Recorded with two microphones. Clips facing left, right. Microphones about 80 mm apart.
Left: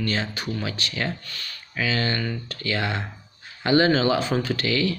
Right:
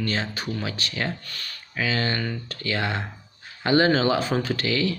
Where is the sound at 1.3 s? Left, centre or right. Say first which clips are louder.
Even; right.